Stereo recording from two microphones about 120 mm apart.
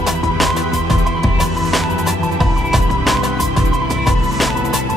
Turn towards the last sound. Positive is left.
turn(degrees=0)  # may be behind; listen again after turning